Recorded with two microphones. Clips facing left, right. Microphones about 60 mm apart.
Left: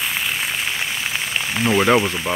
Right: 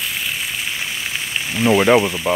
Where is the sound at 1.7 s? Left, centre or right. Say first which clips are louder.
Right 2 dB; centre.